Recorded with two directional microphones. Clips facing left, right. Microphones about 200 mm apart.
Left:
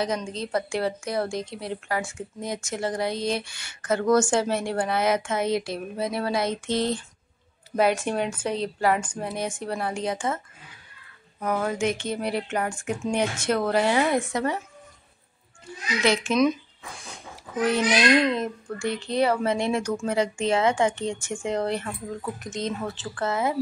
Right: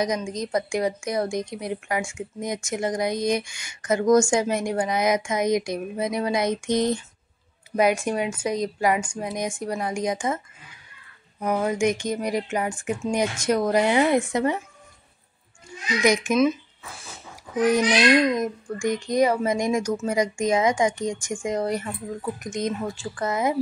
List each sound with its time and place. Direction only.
0.0 s speech: 15° right (ahead or behind)
16.0 s a child's voice: 15° right (ahead or behind)